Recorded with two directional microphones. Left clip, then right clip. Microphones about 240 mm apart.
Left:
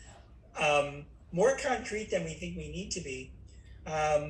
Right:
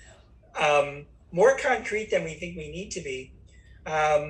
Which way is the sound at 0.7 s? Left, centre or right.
Centre.